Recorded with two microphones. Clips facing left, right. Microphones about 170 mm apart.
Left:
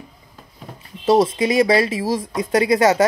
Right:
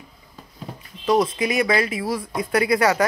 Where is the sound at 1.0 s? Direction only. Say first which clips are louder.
Left 4 dB; 25° left (ahead or behind).